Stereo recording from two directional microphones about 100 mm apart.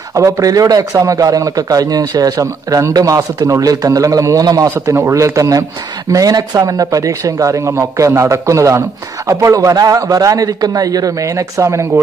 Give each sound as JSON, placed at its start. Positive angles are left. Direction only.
{"t": 0.1, "sound": "a man's voice", "side_deg": -35}
{"t": 4.7, "sound": "a man's voice", "side_deg": -25}